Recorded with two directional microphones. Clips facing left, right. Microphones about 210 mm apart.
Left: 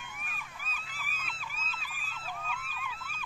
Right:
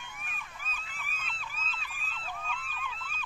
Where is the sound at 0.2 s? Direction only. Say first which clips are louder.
Even; 5° left (ahead or behind).